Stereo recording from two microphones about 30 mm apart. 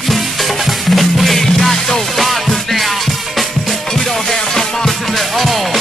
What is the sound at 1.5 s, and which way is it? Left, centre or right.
Music, centre.